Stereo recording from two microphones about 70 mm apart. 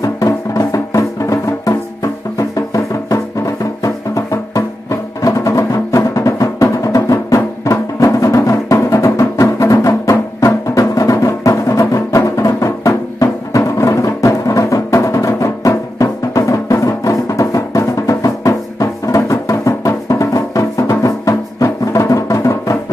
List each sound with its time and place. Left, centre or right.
0.0 s music: left